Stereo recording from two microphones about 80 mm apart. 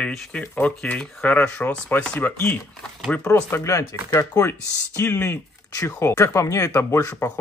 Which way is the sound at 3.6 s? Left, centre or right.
Left.